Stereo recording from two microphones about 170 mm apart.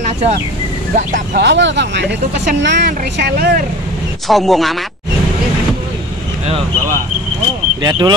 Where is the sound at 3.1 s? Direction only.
70° right (ahead or behind).